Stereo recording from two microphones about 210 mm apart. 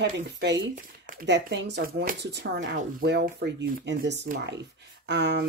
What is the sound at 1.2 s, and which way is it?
Speech, 55° right (ahead or behind).